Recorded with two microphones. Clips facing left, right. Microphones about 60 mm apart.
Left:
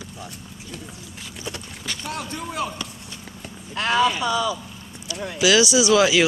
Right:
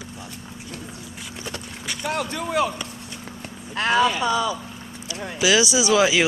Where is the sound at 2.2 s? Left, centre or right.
Right.